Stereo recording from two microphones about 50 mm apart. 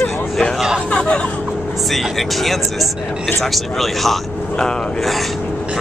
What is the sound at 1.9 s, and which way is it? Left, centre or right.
Speech, centre.